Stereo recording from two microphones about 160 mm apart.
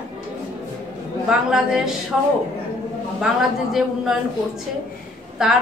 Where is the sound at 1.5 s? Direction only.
5° right (ahead or behind).